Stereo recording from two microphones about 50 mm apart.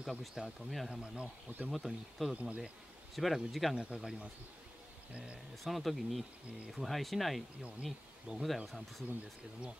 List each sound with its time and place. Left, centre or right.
0.0 s speech: centre
0.8 s speech: centre
1.7 s speech: centre
2.3 s speech: right
3.2 s speech: centre
3.7 s speech: centre
5.6 s speech: centre